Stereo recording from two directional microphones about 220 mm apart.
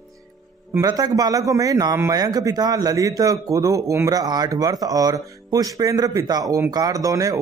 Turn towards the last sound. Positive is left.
turn(degrees=-15)  # may be behind; listen again after turning